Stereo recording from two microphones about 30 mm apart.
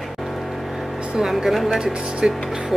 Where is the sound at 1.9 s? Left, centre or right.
Right.